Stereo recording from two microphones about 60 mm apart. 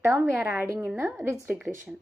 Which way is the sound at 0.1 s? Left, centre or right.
Right.